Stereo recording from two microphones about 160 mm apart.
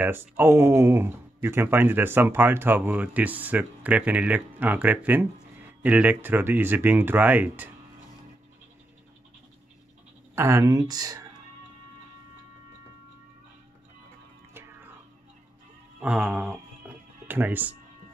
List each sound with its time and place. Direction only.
0.0 s speech: 15° right (ahead or behind)
10.3 s speech: 15° right (ahead or behind)
14.5 s music: 15° right (ahead or behind)
16.0 s a sound: 5° right (ahead or behind)
16.8 s music: 5° right (ahead or behind)
17.3 s speech: 10° right (ahead or behind)